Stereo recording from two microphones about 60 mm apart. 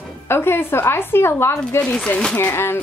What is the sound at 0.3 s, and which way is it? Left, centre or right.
A woman's voice, left.